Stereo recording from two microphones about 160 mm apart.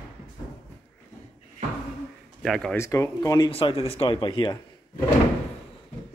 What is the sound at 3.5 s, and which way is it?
Speech, 35° left (ahead or behind).